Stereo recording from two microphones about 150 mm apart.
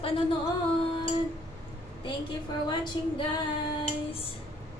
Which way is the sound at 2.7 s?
30° left (ahead or behind).